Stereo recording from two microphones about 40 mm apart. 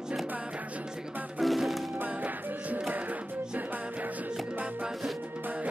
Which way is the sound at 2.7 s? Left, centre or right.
Right.